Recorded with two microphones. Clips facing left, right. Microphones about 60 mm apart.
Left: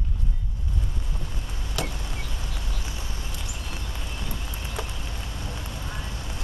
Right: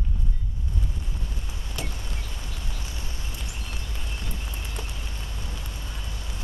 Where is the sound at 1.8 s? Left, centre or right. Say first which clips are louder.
Left 5 dB; left.